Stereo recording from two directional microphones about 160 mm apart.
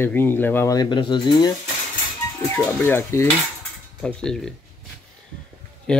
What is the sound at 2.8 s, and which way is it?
Speech, 15° left (ahead or behind).